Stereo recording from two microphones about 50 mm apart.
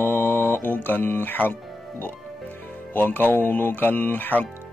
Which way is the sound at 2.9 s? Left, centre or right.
Left.